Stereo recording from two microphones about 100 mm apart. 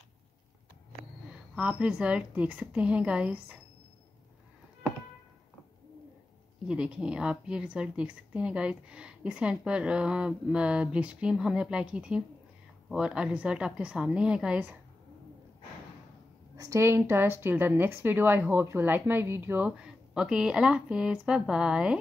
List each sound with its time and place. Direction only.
1.5 s a woman's voice: 10° right (ahead or behind)
6.7 s a woman's voice: 10° right (ahead or behind)
16.5 s a woman's voice: 30° right (ahead or behind)
19.8 s a woman's voice: 5° right (ahead or behind)